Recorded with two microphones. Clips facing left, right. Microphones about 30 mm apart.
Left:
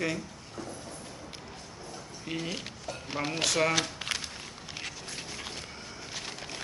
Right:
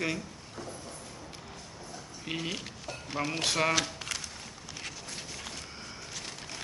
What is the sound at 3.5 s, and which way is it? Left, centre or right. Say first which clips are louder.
Speech: left 1 dB; centre.